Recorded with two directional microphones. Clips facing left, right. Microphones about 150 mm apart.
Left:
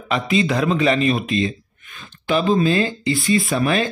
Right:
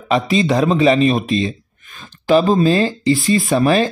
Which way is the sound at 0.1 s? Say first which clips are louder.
Right 4 dB; 35° right (ahead or behind).